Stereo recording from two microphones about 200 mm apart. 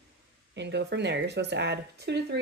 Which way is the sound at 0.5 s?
60° right (ahead or behind).